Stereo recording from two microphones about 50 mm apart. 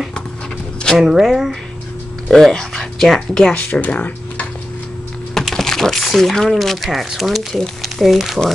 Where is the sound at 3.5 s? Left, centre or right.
Left.